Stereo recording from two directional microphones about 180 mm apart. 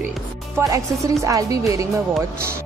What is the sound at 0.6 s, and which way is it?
A woman's voice, 15° right (ahead or behind).